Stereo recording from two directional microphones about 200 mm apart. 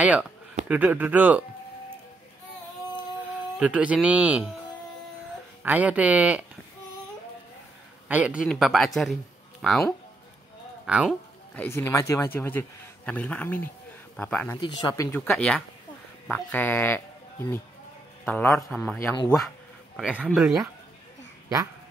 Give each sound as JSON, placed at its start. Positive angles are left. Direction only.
{"t": 0.7, "sound": "speech", "side_deg": -5}
{"t": 3.5, "sound": "speech", "side_deg": -5}
{"t": 5.6, "sound": "speech", "side_deg": -5}
{"t": 8.1, "sound": "speech", "side_deg": -5}
{"t": 11.5, "sound": "speech", "side_deg": 10}
{"t": 14.6, "sound": "speech", "side_deg": 20}
{"t": 18.2, "sound": "speech", "side_deg": 10}
{"t": 18.9, "sound": "speech", "side_deg": 15}
{"t": 20.0, "sound": "speech", "side_deg": -5}